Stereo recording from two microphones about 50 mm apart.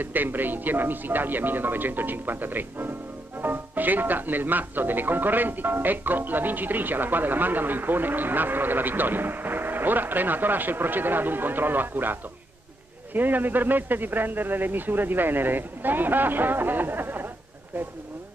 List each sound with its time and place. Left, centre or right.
0.0 s speech: right